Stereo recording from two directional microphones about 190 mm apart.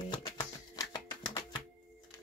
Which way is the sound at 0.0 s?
20° left (ahead or behind).